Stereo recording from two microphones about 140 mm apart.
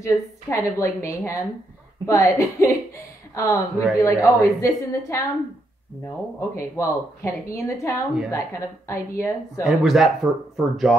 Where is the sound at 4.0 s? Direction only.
20° left (ahead or behind).